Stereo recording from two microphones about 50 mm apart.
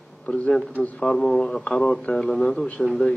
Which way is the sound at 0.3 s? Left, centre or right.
Centre.